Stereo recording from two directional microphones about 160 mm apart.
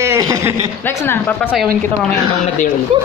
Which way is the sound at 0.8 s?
15° left (ahead or behind).